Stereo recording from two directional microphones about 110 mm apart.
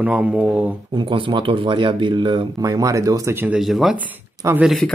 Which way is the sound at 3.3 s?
15° right (ahead or behind).